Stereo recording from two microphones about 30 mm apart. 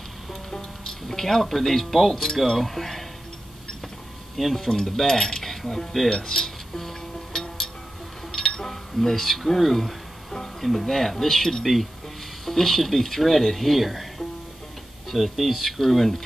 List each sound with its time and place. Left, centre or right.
1.0 s speech: centre
4.4 s speech: centre
4.6 s speech: centre
6.0 s music: centre
8.3 s a sound: centre
10.4 s speech: centre
11.6 s speech: centre